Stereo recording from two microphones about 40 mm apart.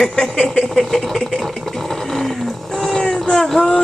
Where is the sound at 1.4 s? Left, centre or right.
Centre.